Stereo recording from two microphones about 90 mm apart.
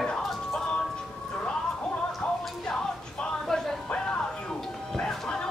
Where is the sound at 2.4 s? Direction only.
5° left (ahead or behind).